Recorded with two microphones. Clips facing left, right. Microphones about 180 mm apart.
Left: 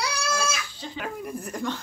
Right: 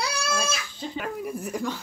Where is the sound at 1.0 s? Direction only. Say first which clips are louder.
Right 1 dB; 5° right (ahead or behind).